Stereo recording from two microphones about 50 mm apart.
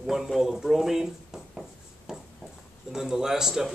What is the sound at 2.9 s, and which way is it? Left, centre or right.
Speech, centre.